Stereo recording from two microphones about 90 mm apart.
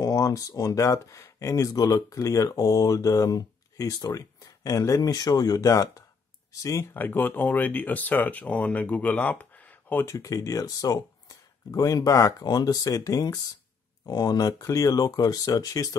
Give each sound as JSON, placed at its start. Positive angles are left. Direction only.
{"t": 0.0, "sound": "speech", "side_deg": 40}
{"t": 7.0, "sound": "speech", "side_deg": 20}
{"t": 10.1, "sound": "speech", "side_deg": 40}